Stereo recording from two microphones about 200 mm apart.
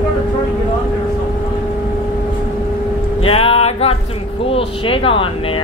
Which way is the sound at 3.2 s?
30° left (ahead or behind).